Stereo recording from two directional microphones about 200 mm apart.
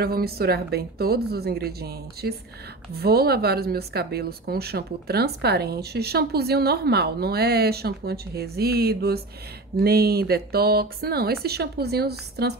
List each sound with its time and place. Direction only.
0.0 s speech: 50° right (ahead or behind)